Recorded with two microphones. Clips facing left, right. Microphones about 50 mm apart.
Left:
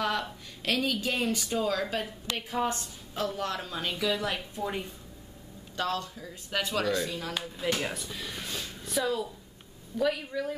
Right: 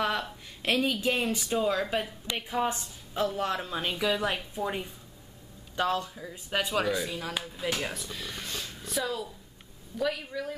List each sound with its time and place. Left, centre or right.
0.6 s a woman's voice: centre
5.8 s speech: centre